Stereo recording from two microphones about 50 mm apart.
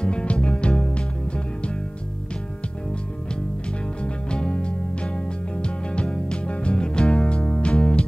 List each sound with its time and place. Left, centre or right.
0.0 s music: left
4.0 s music: centre